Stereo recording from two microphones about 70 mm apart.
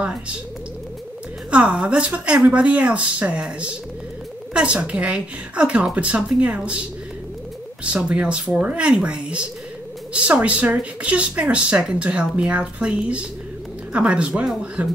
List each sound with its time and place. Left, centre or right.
0.0 s speech: centre
1.5 s speech: centre
7.8 s speech: centre